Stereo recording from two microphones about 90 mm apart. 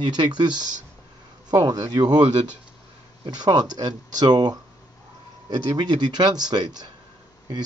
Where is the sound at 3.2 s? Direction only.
50° right (ahead or behind).